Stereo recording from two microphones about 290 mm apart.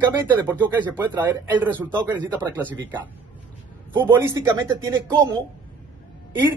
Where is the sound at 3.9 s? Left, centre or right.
Centre.